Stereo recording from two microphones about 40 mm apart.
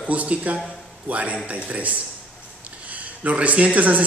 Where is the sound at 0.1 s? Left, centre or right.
Right.